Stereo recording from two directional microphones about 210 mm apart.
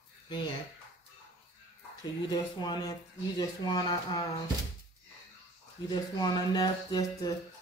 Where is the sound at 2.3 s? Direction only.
20° left (ahead or behind).